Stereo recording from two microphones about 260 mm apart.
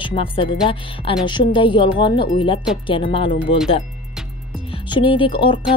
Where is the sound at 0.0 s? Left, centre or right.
Left.